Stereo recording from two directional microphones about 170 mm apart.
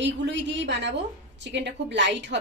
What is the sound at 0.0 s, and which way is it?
A woman's voice, 90° right.